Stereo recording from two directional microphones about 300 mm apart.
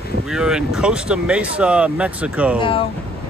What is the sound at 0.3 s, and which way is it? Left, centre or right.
Speech, centre.